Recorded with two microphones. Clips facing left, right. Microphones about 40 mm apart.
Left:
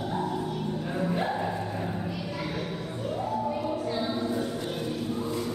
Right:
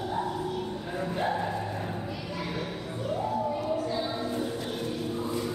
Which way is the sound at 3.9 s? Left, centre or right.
Centre.